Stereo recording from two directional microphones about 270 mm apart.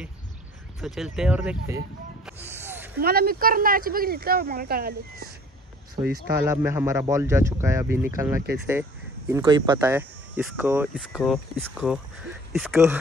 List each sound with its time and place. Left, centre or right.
0.7 s speech: centre
2.2 s gasp: centre
3.0 s speech: right
6.1 s speech: centre